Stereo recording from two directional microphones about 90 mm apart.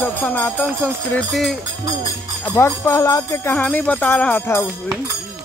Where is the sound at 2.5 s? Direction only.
30° left (ahead or behind).